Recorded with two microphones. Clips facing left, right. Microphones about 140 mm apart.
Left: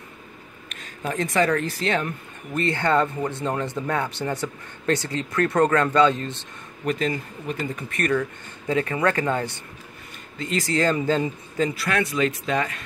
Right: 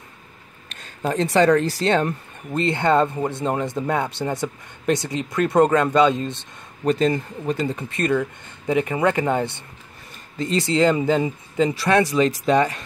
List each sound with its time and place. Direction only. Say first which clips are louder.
0.7 s speech: right 5 dB; 30° right (ahead or behind)
2.6 s speech: right 3 dB; 20° right (ahead or behind)
6.8 s speech: right 5 dB; 35° right (ahead or behind)
11.8 s speech: right 8 dB; 35° right (ahead or behind)